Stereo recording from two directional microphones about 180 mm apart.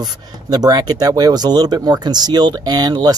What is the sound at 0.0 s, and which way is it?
Speech, 20° right (ahead or behind).